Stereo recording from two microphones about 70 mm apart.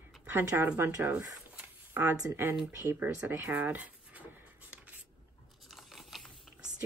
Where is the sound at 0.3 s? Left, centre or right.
Right.